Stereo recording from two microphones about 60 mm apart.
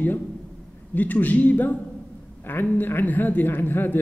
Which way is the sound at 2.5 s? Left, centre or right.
Left.